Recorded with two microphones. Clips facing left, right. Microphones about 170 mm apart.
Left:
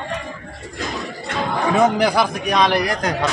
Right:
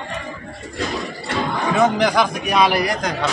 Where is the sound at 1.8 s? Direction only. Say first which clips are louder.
Even; 10° left (ahead or behind).